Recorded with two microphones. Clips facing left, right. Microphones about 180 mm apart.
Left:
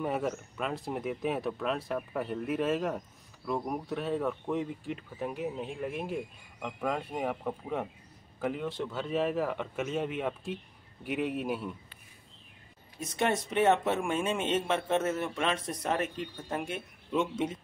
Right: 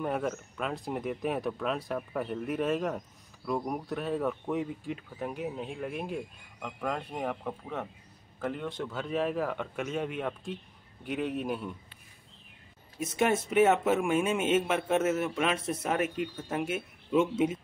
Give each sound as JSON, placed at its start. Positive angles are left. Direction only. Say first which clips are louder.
{"t": 0.0, "sound": "speech", "louder": "even", "side_deg": 5}
{"t": 13.0, "sound": "a man's voice", "louder": "right 2 dB", "side_deg": -5}